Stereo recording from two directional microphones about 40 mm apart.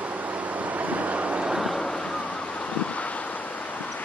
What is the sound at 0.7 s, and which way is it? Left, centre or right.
Vehicle, right.